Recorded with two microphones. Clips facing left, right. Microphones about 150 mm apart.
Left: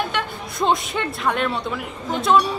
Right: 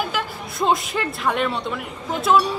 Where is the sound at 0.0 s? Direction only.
Centre (ahead or behind).